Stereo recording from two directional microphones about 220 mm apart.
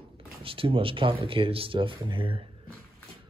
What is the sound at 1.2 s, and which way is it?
Speech, 25° right (ahead or behind).